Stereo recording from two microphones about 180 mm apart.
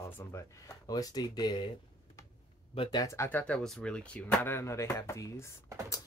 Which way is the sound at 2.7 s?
25° left (ahead or behind).